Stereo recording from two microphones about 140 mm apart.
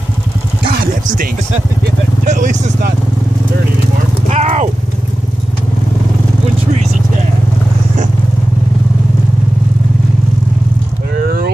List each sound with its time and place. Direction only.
2.2 s speech: 65° right (ahead or behind)
4.3 s horse: 55° right (ahead or behind)